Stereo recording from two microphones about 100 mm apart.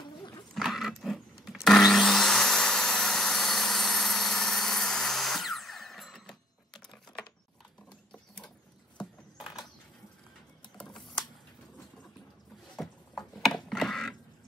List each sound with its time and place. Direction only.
0.2 s dog: 40° left (ahead or behind)
0.6 s wood: centre (ahead or behind)
10.8 s typing: 5° left (ahead or behind)
12.7 s typing: centre (ahead or behind)